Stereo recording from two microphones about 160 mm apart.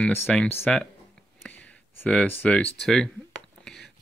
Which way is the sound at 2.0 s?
10° left (ahead or behind).